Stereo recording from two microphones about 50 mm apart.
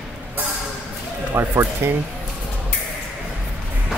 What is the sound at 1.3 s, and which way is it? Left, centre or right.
Music, right.